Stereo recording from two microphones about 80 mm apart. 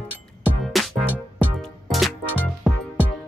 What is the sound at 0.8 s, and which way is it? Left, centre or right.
Music, centre.